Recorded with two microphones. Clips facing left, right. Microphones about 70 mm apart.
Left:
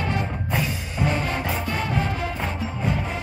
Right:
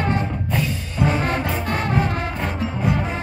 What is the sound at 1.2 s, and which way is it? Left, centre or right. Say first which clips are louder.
Music: right 3 dB; right.